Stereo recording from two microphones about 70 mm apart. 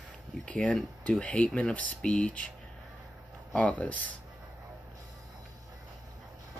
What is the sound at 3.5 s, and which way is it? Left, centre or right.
Speech, left.